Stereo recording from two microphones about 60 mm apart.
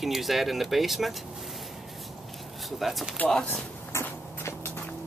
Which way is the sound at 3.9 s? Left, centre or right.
Left.